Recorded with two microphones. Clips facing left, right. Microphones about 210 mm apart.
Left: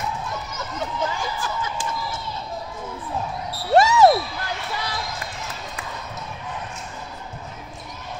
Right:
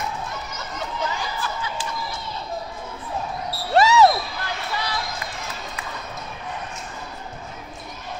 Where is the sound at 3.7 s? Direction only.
50° left (ahead or behind).